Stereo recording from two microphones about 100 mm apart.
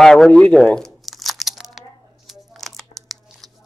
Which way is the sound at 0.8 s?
Centre (ahead or behind).